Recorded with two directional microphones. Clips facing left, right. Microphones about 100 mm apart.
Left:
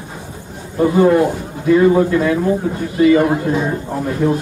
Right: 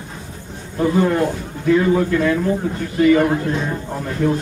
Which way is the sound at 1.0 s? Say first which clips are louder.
Left 7 dB; 15° left (ahead or behind).